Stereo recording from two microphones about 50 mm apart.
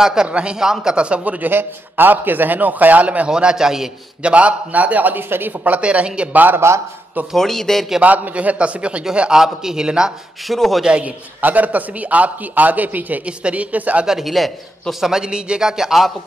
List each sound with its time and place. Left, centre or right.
0.0 s a man's voice: centre; by 1.5 s right
1.5 s a man's voice: right
3.3 s a man's voice: centre
4.2 s a man's voice: right
5.8 s speech: right
6.3 s a man's voice: right
7.3 s a man's voice: centre
8.0 s speech: right
9.4 s a man's voice: centre
10.5 s a man's voice: centre
10.8 s a man's voice: right
14.0 s a man's voice: centre